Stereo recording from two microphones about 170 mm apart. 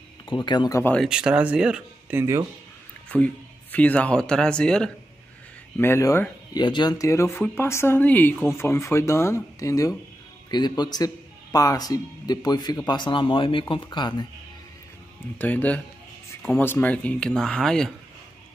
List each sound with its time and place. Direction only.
0.3 s a man's voice: 25° left (ahead or behind)
0.9 s speech: 5° right (ahead or behind)
3.1 s speech: 10° left (ahead or behind)
5.8 s speech: 15° left (ahead or behind)
6.5 s a man's voice: 25° left (ahead or behind)
15.3 s speech: 10° left (ahead or behind)